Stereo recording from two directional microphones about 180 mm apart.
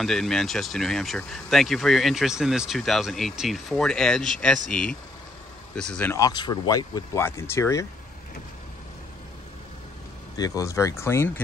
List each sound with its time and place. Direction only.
0.0 s speech: centre (ahead or behind)
6.1 s speech: 20° left (ahead or behind)
10.3 s speech: 20° left (ahead or behind)